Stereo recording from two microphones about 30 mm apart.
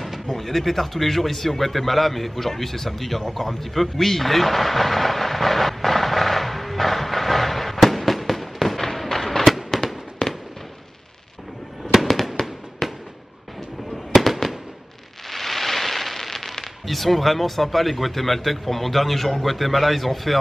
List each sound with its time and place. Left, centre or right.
0.3 s a sound: centre
8.8 s fireworks: centre
12.4 s fireworks: centre
14.3 s fireworks: centre
15.3 s a sound: centre
16.8 s speech: centre